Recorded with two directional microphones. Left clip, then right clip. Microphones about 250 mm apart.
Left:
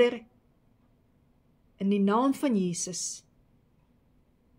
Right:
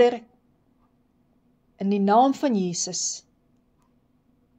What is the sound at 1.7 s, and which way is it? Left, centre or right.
Speech, left.